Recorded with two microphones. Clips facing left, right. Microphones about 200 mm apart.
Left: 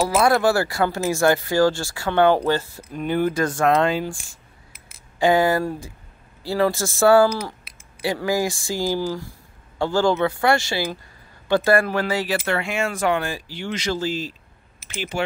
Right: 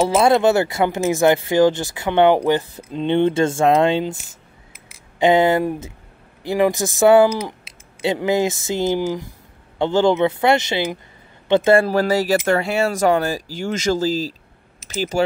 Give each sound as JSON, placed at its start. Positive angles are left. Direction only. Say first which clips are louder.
{"t": 0.0, "sound": "speech", "louder": "right 3 dB", "side_deg": -25}
{"t": 5.2, "sound": "speech", "louder": "right 3 dB", "side_deg": -20}